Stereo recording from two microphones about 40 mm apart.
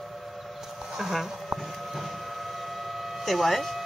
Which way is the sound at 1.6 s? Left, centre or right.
Centre.